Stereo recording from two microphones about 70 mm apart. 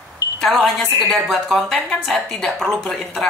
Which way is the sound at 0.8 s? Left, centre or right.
Right.